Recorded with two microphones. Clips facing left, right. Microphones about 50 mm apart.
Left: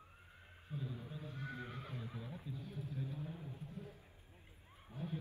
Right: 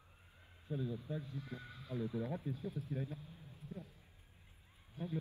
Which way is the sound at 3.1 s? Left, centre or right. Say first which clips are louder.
Left 7 dB; left.